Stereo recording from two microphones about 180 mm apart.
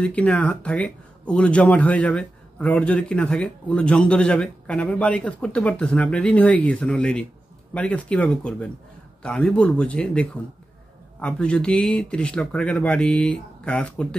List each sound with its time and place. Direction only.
0.0 s speech: 5° left (ahead or behind)